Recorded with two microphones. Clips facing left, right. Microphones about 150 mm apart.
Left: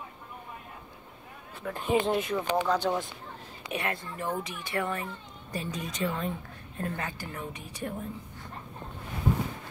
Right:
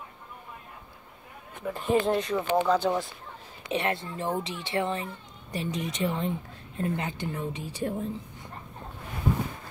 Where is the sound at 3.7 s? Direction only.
25° right (ahead or behind).